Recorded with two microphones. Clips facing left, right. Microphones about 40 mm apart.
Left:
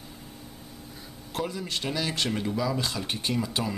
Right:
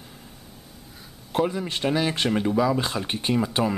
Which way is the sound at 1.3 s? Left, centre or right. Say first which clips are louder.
Right 7 dB; right.